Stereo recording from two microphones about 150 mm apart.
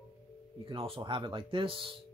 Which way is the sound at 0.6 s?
40° right (ahead or behind).